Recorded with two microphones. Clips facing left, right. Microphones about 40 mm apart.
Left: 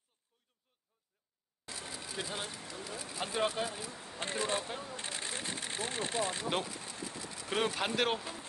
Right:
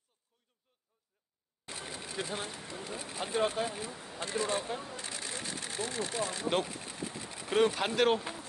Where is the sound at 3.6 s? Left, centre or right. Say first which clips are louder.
Right 2 dB; centre.